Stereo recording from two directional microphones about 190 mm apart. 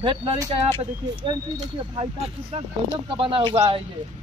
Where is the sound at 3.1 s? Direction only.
25° right (ahead or behind).